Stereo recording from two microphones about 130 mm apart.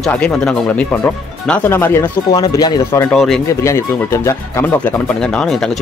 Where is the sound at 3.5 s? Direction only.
20° left (ahead or behind).